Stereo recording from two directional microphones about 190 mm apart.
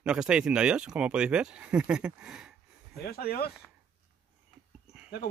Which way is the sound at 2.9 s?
55° left (ahead or behind).